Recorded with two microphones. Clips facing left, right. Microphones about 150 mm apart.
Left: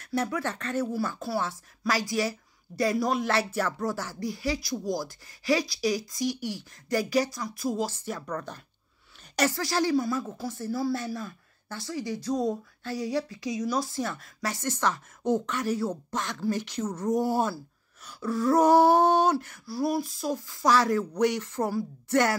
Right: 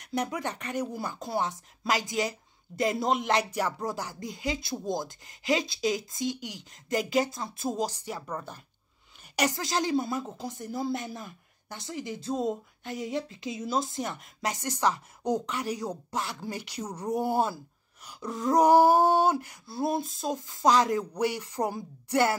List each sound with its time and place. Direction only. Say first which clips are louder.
0.0 s speech: left 2 dB; 15° right (ahead or behind)
18.0 s a sound: left 4 dB; 20° right (ahead or behind)
19.3 s speech: left 3 dB; 15° right (ahead or behind)